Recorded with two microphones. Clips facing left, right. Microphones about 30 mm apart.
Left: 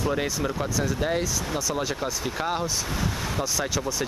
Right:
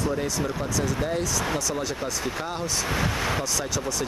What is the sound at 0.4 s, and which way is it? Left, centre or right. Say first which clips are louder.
Speech: even; centre.